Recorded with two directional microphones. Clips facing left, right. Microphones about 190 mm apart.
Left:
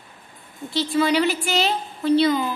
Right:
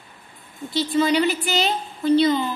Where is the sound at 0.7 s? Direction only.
Centre (ahead or behind).